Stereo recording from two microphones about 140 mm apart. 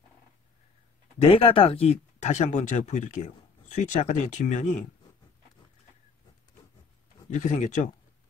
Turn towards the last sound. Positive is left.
turn(degrees=60)  # may be behind; listen again after turning